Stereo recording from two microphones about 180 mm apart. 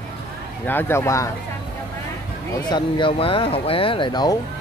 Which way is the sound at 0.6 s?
10° left (ahead or behind).